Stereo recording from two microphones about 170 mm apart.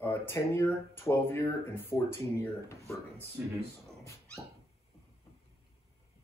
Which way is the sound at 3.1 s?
15° right (ahead or behind).